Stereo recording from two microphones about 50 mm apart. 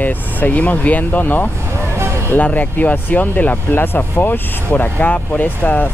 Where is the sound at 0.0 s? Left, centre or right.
Left.